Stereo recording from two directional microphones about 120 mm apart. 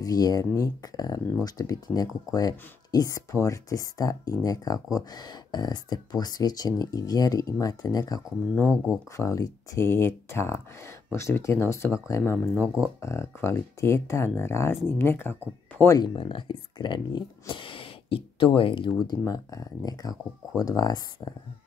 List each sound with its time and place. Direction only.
0.0 s speech: 30° left (ahead or behind)
8.6 s speech: 5° right (ahead or behind)
9.1 s speech: 25° left (ahead or behind)
12.6 s speech: 5° right (ahead or behind)
13.0 s speech: 20° left (ahead or behind)
16.0 s speech: 40° left (ahead or behind)
19.0 s speech: 30° left (ahead or behind)